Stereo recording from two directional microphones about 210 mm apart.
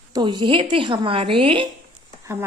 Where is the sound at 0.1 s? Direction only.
20° right (ahead or behind).